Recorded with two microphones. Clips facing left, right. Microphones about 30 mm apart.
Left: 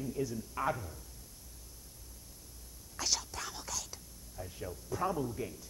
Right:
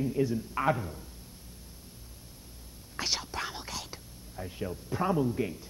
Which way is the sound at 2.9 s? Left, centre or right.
Right.